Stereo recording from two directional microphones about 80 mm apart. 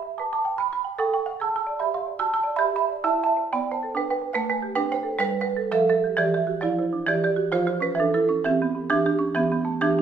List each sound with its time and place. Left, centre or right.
5.7 s music: centre